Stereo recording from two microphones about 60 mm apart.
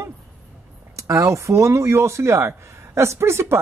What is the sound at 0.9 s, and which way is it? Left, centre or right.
Speech, right.